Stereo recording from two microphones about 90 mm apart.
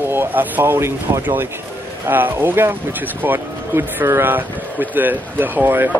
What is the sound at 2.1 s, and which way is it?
Speech, 20° right (ahead or behind).